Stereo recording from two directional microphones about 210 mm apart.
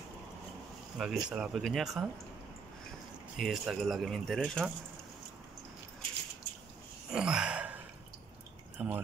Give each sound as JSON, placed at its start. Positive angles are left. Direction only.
{"t": 0.9, "sound": "speech", "side_deg": -5}
{"t": 3.3, "sound": "speech", "side_deg": 0}
{"t": 7.1, "sound": "sigh", "side_deg": -5}
{"t": 8.7, "sound": "speech", "side_deg": -10}